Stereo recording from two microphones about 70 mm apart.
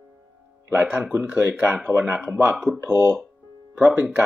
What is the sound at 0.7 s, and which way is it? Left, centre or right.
Speech, right.